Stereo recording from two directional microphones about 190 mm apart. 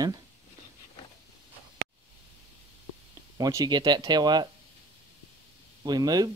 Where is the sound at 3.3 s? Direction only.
20° right (ahead or behind).